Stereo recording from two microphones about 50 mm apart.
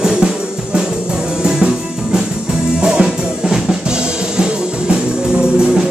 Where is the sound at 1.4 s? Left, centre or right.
Centre.